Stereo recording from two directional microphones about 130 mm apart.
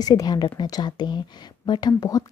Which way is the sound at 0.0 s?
30° left (ahead or behind).